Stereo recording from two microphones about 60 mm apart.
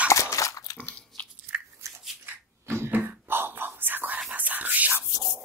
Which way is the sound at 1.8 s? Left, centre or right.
Right.